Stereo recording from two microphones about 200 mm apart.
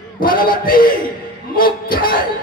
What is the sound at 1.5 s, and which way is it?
Music, 45° left (ahead or behind).